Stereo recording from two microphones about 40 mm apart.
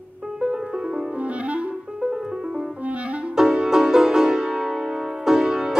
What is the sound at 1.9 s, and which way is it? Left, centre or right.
Music, centre.